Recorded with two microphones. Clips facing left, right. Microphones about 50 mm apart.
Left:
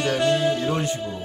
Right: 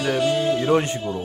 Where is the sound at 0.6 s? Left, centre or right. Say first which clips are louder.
Right 4 dB; right.